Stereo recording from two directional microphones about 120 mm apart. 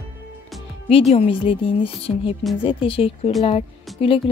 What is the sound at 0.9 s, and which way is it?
A woman's voice, 55° left (ahead or behind).